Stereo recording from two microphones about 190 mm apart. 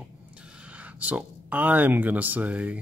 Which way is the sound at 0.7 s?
5° right (ahead or behind).